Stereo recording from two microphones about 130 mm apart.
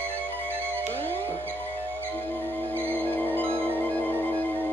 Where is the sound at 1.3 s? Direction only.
15° left (ahead or behind).